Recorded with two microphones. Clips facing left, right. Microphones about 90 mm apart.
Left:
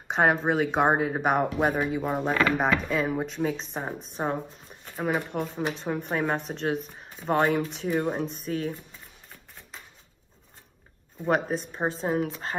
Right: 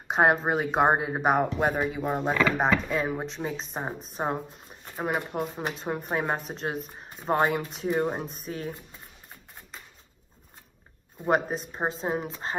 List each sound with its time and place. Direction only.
0.1 s speech: 5° right (ahead or behind)
4.2 s speech: 25° right (ahead or behind)
4.6 s shuffling cards: centre (ahead or behind)
4.9 s speech: 5° right (ahead or behind)
11.2 s speech: 5° right (ahead or behind)